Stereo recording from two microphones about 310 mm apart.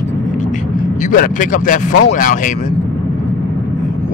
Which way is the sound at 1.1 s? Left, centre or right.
Left.